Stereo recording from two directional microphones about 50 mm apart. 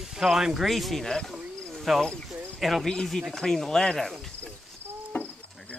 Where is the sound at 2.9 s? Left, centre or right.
Centre.